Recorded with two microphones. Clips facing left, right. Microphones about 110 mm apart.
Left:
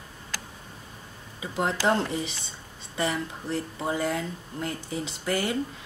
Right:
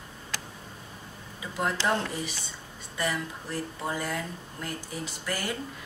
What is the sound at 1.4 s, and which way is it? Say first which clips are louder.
Speech: left 3 dB; 25° left (ahead or behind).